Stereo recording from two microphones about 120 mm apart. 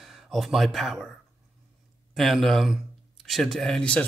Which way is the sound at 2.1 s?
Centre (ahead or behind).